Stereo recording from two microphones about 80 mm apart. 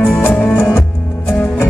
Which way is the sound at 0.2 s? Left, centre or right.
Centre.